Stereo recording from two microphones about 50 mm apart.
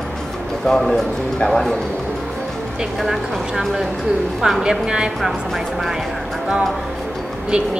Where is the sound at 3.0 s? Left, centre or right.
Centre.